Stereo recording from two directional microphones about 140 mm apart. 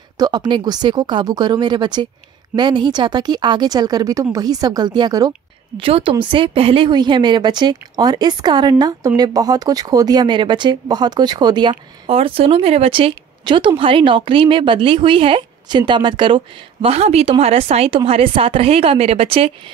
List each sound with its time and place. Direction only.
0.2 s a woman's voice: 30° right (ahead or behind)
5.8 s a woman's voice: 40° right (ahead or behind)